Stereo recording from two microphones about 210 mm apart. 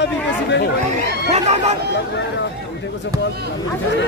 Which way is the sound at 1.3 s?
30° right (ahead or behind).